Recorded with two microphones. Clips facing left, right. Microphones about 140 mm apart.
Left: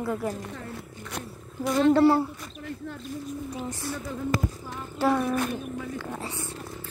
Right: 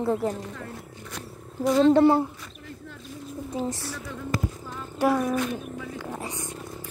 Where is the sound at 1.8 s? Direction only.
20° right (ahead or behind).